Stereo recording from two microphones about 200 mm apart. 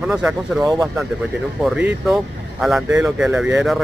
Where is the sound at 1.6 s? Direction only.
Centre (ahead or behind).